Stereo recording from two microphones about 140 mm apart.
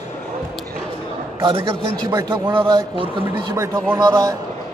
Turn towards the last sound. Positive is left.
turn(degrees=-30)  # may be behind; listen again after turning